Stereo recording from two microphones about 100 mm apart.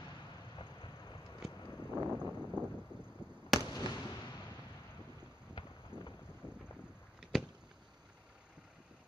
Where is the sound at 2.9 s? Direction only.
50° right (ahead or behind).